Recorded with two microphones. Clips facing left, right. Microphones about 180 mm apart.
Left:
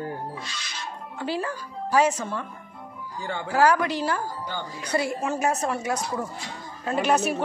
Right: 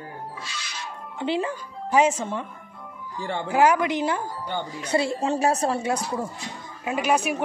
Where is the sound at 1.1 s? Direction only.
20° right (ahead or behind).